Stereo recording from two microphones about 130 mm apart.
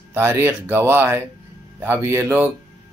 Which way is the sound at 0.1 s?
20° right (ahead or behind).